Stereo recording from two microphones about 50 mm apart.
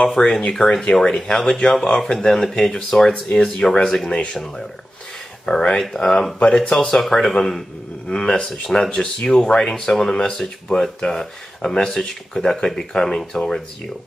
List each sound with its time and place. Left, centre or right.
0.0 s speech: left
3.1 s speech: left
5.4 s speech: centre
6.9 s speech: centre